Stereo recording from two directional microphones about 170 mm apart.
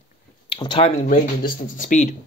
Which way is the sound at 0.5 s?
30° left (ahead or behind).